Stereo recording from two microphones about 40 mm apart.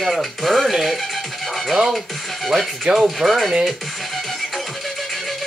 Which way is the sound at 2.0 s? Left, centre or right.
Centre.